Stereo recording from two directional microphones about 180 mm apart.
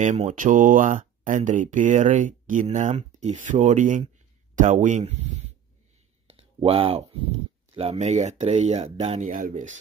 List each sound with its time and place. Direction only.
0.0 s speech: 40° right (ahead or behind)
6.2 s a sound: 30° right (ahead or behind)
7.7 s speech: 35° right (ahead or behind)